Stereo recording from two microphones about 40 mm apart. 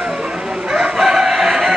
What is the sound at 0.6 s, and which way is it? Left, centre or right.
Chicken, centre.